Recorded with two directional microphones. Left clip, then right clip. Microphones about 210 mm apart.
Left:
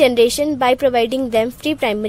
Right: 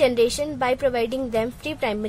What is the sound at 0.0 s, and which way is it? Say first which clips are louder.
A woman's voice: left 6 dB; 35° left (ahead or behind).